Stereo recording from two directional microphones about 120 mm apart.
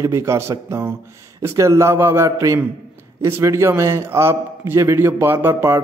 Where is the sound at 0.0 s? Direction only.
25° right (ahead or behind).